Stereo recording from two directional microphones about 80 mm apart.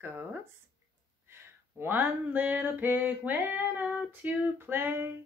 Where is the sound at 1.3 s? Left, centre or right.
Right.